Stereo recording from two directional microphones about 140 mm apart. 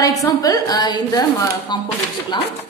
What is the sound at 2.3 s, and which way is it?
Speech, 35° left (ahead or behind).